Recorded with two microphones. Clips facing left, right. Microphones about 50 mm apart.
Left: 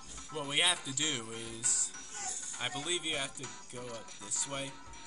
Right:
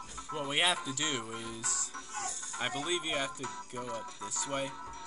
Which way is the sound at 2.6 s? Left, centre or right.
Centre.